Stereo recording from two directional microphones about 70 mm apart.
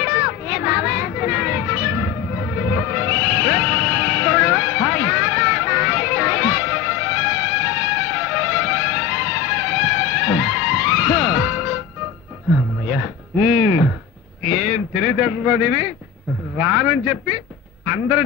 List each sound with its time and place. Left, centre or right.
0.0 s music: centre
12.8 s a sound: centre
16.5 s a man's voice: centre